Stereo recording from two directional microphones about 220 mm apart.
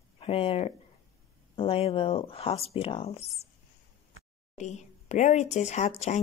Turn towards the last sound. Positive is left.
turn(degrees=30)  # may be behind; listen again after turning